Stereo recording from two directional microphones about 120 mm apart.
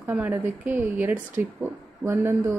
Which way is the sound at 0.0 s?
15° right (ahead or behind).